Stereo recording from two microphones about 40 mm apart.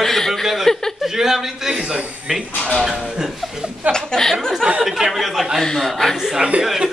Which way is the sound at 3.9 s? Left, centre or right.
Centre.